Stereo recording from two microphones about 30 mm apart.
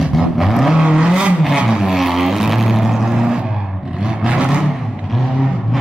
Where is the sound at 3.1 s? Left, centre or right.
Centre.